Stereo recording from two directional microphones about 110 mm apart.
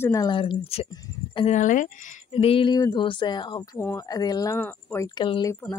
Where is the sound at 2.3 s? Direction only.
60° left (ahead or behind).